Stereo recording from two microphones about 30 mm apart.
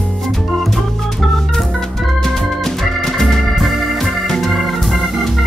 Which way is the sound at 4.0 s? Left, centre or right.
Centre.